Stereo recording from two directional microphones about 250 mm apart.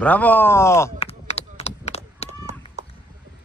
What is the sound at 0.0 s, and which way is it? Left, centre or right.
Speech, centre.